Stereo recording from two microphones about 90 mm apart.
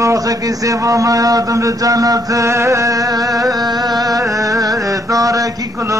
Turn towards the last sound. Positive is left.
turn(degrees=-40)  # may be behind; listen again after turning